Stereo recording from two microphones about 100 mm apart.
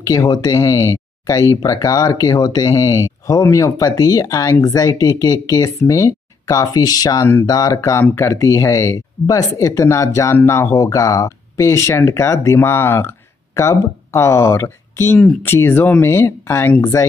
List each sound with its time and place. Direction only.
0.0 s speech: 35° left (ahead or behind)